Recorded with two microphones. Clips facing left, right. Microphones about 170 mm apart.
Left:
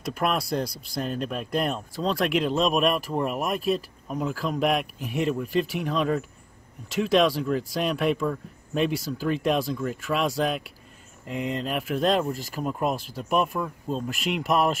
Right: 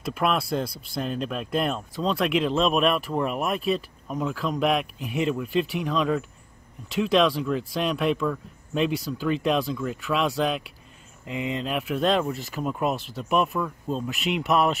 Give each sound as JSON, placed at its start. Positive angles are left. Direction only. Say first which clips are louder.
{"t": 0.1, "sound": "speech", "louder": "right 1 dB", "side_deg": 0}
{"t": 9.6, "sound": "speech", "louder": "even", "side_deg": 45}
{"t": 10.1, "sound": "speech", "louder": "right 1 dB", "side_deg": 0}